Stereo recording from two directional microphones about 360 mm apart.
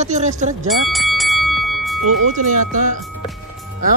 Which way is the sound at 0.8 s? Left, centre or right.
Centre.